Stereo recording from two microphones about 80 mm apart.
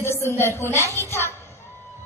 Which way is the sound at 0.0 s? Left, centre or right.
Left.